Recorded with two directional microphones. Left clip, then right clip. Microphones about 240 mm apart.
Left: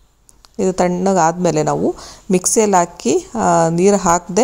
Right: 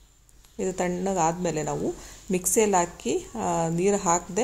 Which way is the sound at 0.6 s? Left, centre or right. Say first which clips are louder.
Left 11 dB; left.